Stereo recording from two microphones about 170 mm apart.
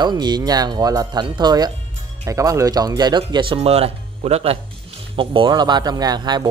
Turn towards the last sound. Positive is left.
turn(degrees=-25)  # may be behind; listen again after turning